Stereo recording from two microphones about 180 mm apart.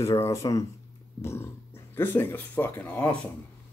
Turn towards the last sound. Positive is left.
turn(degrees=5)  # may be behind; listen again after turning